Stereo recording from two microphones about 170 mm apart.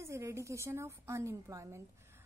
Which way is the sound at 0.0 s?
15° right (ahead or behind).